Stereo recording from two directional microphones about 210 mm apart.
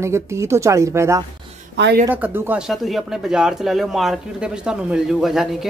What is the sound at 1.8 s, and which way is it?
Speech, 55° right (ahead or behind).